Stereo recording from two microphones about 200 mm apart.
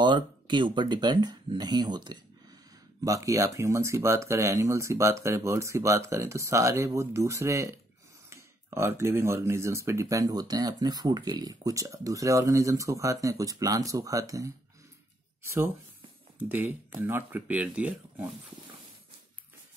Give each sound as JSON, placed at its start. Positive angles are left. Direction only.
{"t": 0.0, "sound": "speech", "side_deg": -25}
{"t": 16.3, "sound": "speech", "side_deg": -10}